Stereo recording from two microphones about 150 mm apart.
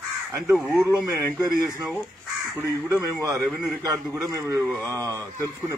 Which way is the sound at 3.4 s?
Centre (ahead or behind).